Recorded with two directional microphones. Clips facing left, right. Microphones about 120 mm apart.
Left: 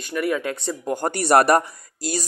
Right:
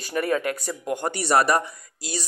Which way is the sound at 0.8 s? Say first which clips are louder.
Left 4 dB; 35° left (ahead or behind).